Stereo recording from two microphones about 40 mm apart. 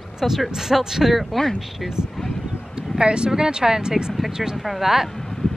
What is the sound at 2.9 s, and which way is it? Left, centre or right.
Speech, right.